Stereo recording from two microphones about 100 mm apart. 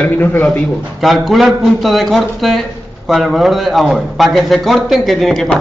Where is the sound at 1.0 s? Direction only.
Centre (ahead or behind).